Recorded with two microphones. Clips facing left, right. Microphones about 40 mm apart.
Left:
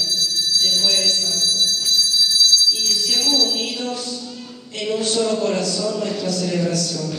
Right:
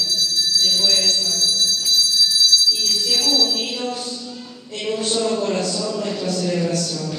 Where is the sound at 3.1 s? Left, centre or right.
Centre.